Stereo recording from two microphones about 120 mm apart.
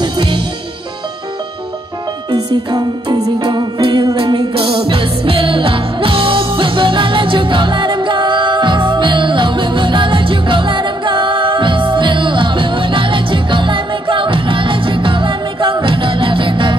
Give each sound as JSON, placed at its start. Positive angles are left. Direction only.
{"t": 0.0, "sound": "music", "side_deg": -40}
{"t": 2.3, "sound": "music", "side_deg": -35}